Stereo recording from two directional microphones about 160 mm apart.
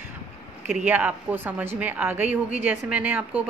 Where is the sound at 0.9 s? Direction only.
10° right (ahead or behind).